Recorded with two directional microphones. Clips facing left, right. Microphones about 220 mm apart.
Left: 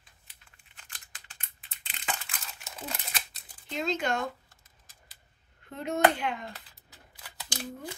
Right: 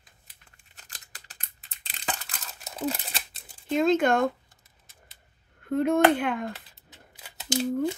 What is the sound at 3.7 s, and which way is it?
Speech, 50° right (ahead or behind).